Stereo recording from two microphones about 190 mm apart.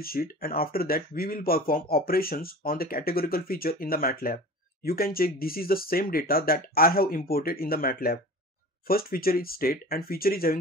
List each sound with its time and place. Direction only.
0.0 s speech: 50° left (ahead or behind)